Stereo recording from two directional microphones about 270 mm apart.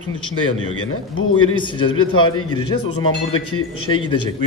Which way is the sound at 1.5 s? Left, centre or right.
Centre.